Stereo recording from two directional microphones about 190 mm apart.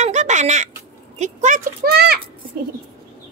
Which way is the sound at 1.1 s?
40° right (ahead or behind).